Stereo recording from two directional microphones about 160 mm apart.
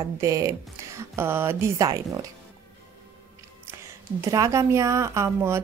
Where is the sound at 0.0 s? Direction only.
20° right (ahead or behind).